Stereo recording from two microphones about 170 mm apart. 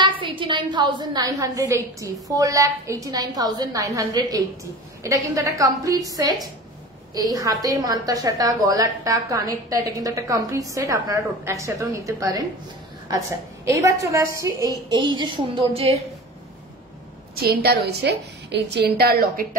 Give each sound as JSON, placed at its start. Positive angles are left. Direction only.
{"t": 0.0, "sound": "a woman's voice", "side_deg": -30}
{"t": 13.7, "sound": "a woman's voice", "side_deg": -20}
{"t": 17.4, "sound": "a woman's voice", "side_deg": -65}